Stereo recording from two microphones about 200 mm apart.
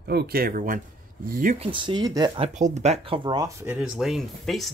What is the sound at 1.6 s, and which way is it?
Speech, 25° right (ahead or behind).